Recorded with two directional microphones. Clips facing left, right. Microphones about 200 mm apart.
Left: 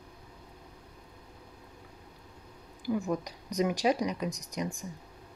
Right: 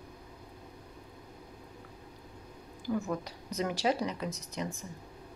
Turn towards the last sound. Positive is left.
turn(degrees=15)  # may be behind; listen again after turning